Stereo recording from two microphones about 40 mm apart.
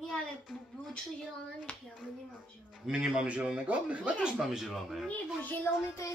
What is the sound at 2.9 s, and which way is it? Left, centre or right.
Speech, centre.